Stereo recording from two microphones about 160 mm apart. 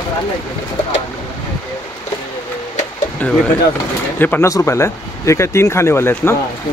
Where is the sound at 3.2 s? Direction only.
10° left (ahead or behind).